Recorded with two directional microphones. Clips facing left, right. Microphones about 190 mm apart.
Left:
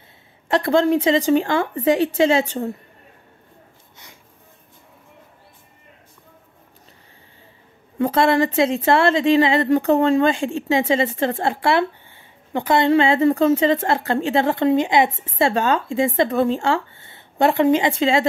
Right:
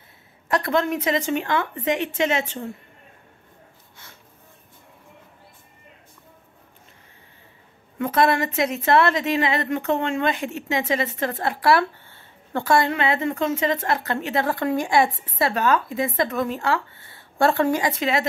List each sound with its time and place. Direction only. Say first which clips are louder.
0.5 s a woman's voice: left 5 dB; 30° left (ahead or behind)
8.0 s a woman's voice: left 3 dB; 30° left (ahead or behind)